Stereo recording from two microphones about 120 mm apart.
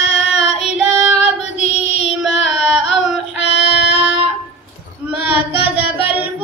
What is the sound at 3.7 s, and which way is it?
Music, 10° right (ahead or behind).